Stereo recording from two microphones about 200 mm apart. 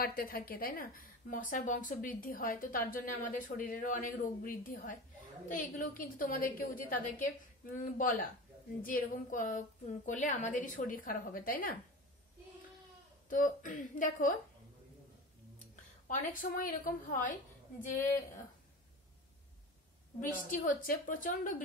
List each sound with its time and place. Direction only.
0.0 s a woman's voice: 45° left (ahead or behind)
13.3 s a woman's voice: 40° left (ahead or behind)
16.1 s a woman's voice: 40° left (ahead or behind)
20.2 s a woman's voice: 40° left (ahead or behind)